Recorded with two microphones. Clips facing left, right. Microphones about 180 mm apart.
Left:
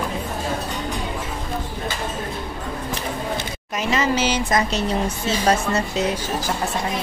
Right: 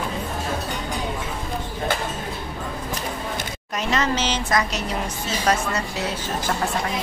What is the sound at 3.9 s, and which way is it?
Speech, 5° left (ahead or behind).